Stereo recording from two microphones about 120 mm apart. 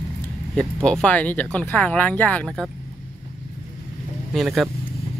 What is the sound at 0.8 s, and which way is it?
Speech, 10° left (ahead or behind).